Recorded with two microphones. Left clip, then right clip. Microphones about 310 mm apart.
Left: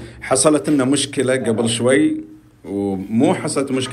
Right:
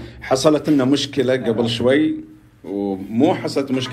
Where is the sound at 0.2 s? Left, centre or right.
Left.